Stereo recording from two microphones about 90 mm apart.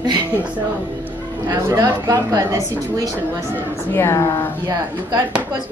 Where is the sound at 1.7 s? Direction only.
30° right (ahead or behind).